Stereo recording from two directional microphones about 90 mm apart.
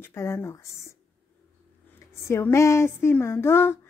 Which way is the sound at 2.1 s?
30° left (ahead or behind).